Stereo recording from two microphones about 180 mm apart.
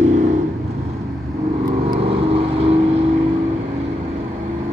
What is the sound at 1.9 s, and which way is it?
Vehicle, 30° right (ahead or behind).